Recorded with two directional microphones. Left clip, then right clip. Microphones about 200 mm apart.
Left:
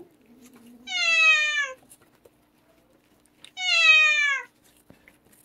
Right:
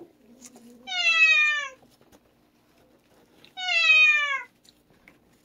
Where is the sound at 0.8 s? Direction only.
70° left (ahead or behind).